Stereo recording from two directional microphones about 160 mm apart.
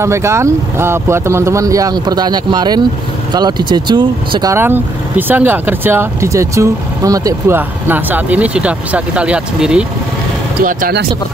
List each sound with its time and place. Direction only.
0.0 s speech: 15° right (ahead or behind)
10.6 s speech: 60° right (ahead or behind)